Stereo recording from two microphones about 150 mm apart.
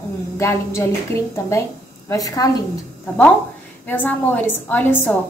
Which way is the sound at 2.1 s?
25° left (ahead or behind).